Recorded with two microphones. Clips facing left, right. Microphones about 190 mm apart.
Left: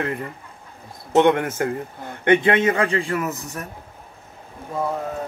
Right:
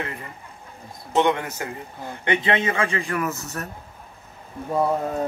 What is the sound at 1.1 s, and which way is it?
A man's voice, 55° left (ahead or behind).